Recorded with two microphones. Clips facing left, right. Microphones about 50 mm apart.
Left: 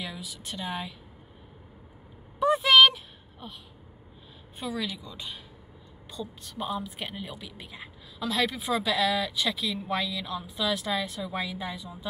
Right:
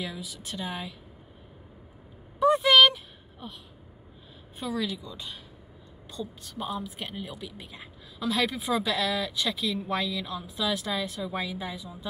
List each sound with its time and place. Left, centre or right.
0.0 s a woman's voice: centre
2.4 s a sound: centre
4.6 s a woman's voice: centre